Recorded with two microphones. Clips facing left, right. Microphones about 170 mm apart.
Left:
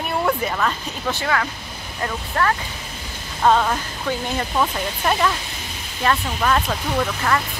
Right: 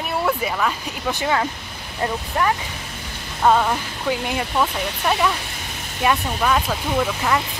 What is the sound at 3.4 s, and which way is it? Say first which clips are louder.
Speech: even; 5° right (ahead or behind).